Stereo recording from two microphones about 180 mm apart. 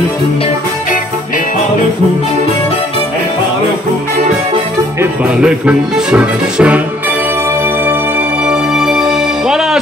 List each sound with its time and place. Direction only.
5.4 s speech: 5° right (ahead or behind)
8.5 s music: 5° right (ahead or behind)